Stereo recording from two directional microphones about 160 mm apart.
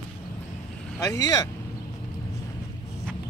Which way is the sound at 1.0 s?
20° left (ahead or behind).